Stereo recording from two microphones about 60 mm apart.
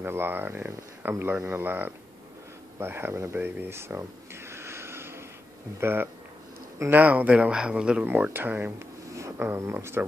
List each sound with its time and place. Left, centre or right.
0.0 s speech: right
3.3 s a sound: right
5.8 s speech: right
6.9 s speech: right
8.0 s speech: right
9.6 s speech: right